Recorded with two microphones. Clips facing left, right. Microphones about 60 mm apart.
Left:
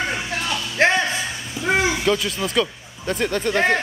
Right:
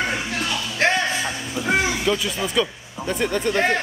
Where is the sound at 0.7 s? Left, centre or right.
Left.